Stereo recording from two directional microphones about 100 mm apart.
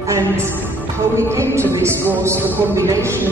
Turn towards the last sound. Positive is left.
turn(degrees=-30)  # may be behind; listen again after turning